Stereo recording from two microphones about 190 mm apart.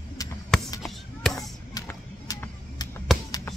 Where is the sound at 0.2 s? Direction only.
20° left (ahead or behind).